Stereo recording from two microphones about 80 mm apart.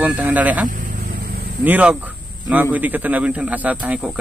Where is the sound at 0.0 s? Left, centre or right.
Right.